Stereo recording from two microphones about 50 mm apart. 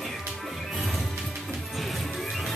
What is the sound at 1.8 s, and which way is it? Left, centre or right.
Music, centre.